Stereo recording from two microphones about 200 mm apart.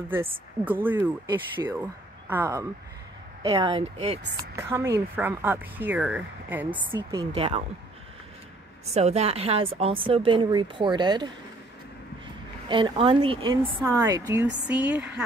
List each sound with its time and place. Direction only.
0.7 s speech: 10° right (ahead or behind)
3.4 s speech: 20° right (ahead or behind)
4.6 s speech: 15° right (ahead or behind)
7.0 s speech: 20° right (ahead or behind)
8.9 s speech: 30° right (ahead or behind); by 15.2 s 5° right (ahead or behind)